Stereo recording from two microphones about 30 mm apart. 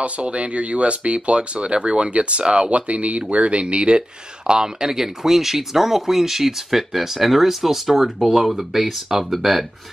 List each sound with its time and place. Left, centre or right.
0.0 s speech: right
2.7 s speech: right
3.6 s speech: right
4.5 s speech: right; by 9.7 s centre